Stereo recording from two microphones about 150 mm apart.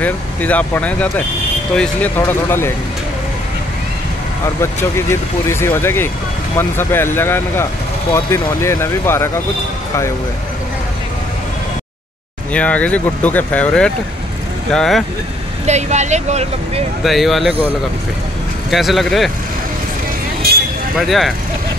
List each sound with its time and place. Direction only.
0.0 s speech: 10° left (ahead or behind)
5.5 s speech: 15° left (ahead or behind)
12.5 s speech: 10° left (ahead or behind)
15.6 s speech: 50° right (ahead or behind)
17.0 s speech: centre (ahead or behind)
18.7 s speech: centre (ahead or behind)
21.0 s speech: centre (ahead or behind)